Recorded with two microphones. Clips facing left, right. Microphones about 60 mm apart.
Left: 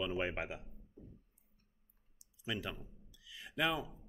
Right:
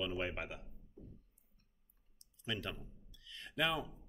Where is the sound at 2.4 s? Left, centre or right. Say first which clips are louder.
Left 1 dB; centre.